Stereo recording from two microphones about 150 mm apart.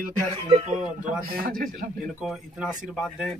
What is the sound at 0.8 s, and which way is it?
Speech, 75° right (ahead or behind).